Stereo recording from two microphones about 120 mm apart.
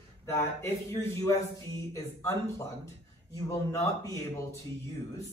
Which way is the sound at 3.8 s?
25° left (ahead or behind).